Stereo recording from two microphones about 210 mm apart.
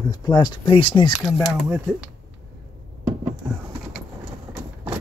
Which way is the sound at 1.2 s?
Centre (ahead or behind).